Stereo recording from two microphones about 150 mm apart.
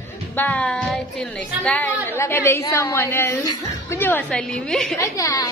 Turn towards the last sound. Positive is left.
turn(degrees=20)  # may be behind; listen again after turning